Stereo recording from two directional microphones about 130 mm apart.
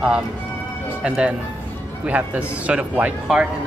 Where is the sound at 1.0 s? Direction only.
10° right (ahead or behind).